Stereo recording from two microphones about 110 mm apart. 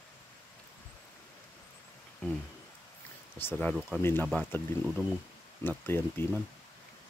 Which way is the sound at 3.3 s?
15° left (ahead or behind).